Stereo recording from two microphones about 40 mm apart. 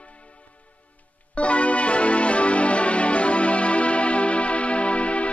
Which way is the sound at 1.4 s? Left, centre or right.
Left.